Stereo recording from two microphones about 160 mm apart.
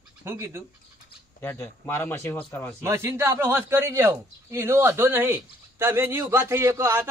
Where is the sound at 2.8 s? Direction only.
15° right (ahead or behind).